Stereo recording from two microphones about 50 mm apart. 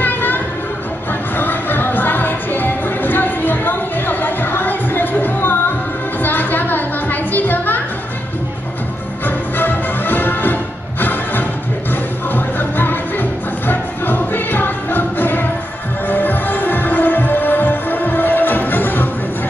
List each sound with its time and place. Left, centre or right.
0.0 s music: left
6.2 s a sound: left
9.2 s music: left